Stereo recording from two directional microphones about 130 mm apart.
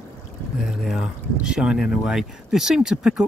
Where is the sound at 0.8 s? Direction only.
5° right (ahead or behind).